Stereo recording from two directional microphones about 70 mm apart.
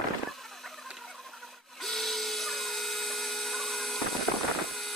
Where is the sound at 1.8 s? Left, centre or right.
Centre.